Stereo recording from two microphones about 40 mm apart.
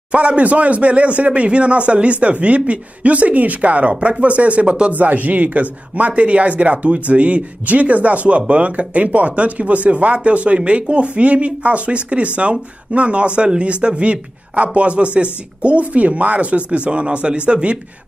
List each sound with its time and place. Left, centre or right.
0.1 s speech: right
4.9 s speech: right